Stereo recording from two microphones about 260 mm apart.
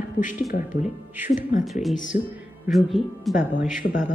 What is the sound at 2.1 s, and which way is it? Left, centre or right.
Speech, left.